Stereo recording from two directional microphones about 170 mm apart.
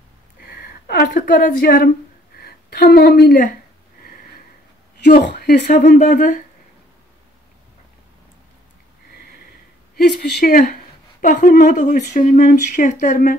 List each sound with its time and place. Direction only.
0.5 s a woman's voice: 70° left (ahead or behind)
5.0 s a woman's voice: 75° left (ahead or behind)
6.0 s a woman's voice: 55° left (ahead or behind)
9.9 s a woman's voice: 60° left (ahead or behind)